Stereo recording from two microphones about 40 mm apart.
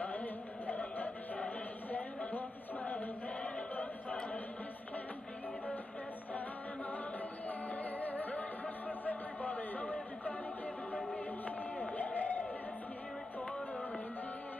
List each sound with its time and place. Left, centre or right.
0.0 s chant: left
3.4 s a capella: left
7.4 s music: left
11.4 s a sound: left